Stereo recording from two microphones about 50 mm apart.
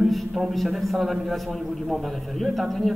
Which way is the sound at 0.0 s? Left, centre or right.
Centre.